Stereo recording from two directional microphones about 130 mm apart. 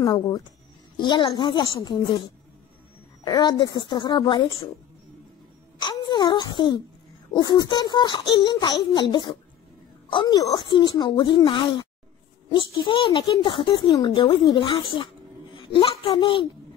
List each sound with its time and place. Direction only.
0.0 s speech: 30° left (ahead or behind)
3.3 s speech: 30° left (ahead or behind)
5.8 s speech: 35° left (ahead or behind)
15.5 s a sound: 40° left (ahead or behind)
16.0 s speech: 40° left (ahead or behind)